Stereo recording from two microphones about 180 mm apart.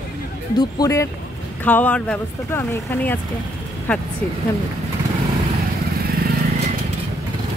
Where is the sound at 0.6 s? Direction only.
20° left (ahead or behind).